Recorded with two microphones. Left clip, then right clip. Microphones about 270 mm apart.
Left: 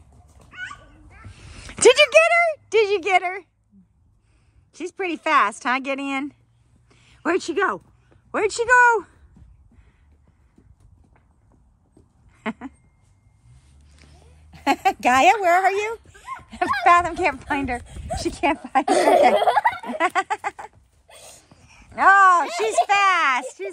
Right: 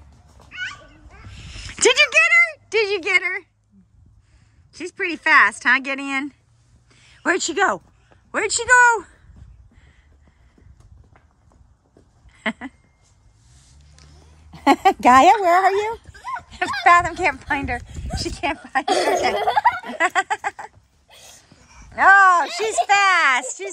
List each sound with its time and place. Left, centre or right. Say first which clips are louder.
0.5 s dog: right 5 dB; left
1.2 s a sound: right 5 dB; centre
4.7 s speech: right 2 dB; centre
6.9 s a sound: right 2 dB; centre
8.3 s speech: right 1 dB; centre
12.3 s a sound: right 5 dB; centre
14.5 s a woman's voice: right 5 dB; centre
16.8 s speech: right 2 dB; centre
18.9 s speech: left 4 dB; left
19.7 s speech: right 2 dB; centre
21.9 s speech: right 2 dB; centre